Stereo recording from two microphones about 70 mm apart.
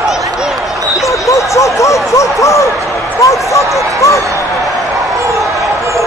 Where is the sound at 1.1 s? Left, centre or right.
Left.